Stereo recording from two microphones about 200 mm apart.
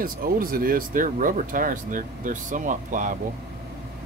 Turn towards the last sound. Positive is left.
turn(degrees=-40)  # may be behind; listen again after turning